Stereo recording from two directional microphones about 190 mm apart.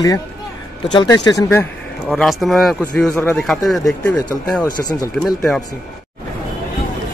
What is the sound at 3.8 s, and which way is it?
A man's voice, 15° left (ahead or behind).